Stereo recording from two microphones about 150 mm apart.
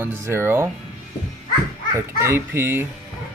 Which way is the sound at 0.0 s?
15° right (ahead or behind).